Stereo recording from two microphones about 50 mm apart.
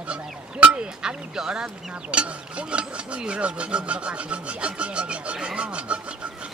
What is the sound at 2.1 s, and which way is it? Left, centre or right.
Rub, right.